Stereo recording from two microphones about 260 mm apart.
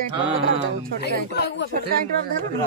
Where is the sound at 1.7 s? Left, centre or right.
Right.